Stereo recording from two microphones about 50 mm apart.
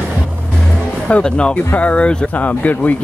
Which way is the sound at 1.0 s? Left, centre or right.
Centre.